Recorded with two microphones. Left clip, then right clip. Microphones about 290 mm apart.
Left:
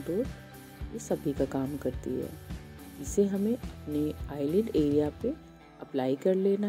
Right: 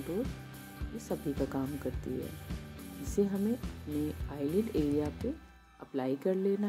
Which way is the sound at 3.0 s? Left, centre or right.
Centre.